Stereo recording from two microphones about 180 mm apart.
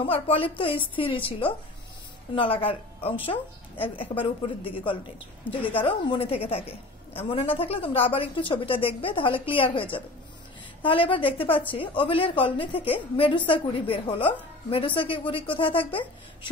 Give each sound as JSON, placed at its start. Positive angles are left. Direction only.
{"t": 0.0, "sound": "a woman's voice", "side_deg": 30}